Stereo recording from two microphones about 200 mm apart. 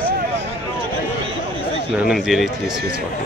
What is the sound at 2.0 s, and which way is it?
Speech, centre (ahead or behind).